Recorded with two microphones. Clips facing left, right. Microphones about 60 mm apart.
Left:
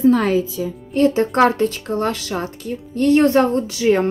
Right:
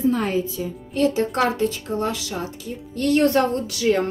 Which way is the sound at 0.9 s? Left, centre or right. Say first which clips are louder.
Left 5 dB; left.